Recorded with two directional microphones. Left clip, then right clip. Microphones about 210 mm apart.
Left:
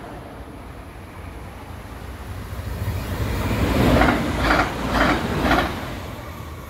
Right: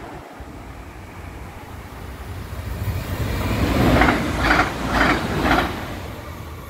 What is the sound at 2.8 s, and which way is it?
Vehicle, centre (ahead or behind).